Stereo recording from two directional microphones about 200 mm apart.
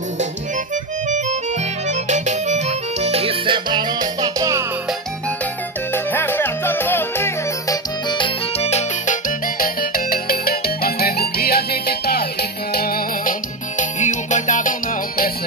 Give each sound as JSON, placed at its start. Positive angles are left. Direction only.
{"t": 1.0, "sound": "accordion", "side_deg": -35}
{"t": 5.9, "sound": "music", "side_deg": 10}